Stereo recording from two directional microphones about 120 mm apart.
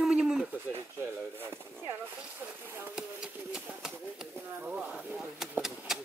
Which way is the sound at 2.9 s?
5° right (ahead or behind).